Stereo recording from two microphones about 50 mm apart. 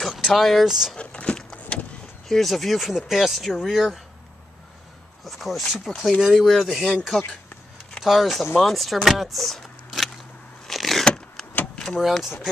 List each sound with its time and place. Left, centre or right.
0.1 s speech: centre
0.9 s vehicle: left
2.2 s speech: centre
5.2 s speech: centre
8.0 s speech: centre
9.8 s a sound: centre
11.6 s vehicle: centre
12.0 s speech: centre